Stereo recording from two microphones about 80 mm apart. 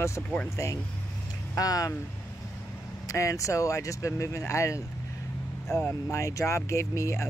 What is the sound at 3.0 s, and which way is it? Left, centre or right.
Speech, left.